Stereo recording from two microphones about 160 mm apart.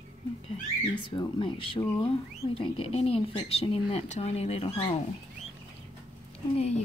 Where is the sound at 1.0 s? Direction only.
30° left (ahead or behind).